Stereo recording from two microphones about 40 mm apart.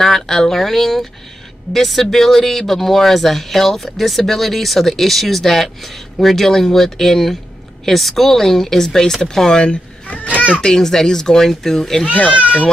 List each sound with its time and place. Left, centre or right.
0.0 s speech: centre
10.0 s children playing: left
10.6 s speech: centre
12.1 s speech: left